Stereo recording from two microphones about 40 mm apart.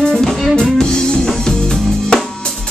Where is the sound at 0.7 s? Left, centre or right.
Left.